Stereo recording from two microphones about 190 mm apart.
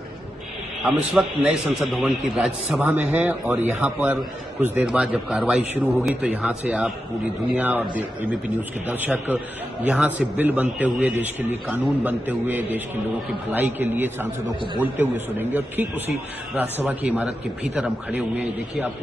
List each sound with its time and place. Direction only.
1.2 s a man's voice: 5° right (ahead or behind)
8.8 s a man's voice: 10° right (ahead or behind)